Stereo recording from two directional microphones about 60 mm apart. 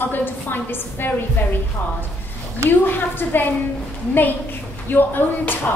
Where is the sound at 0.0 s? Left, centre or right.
Left.